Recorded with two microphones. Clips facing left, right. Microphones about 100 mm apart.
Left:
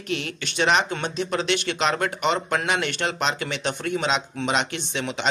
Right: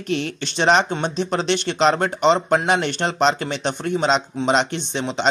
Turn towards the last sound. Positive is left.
turn(degrees=-30)  # may be behind; listen again after turning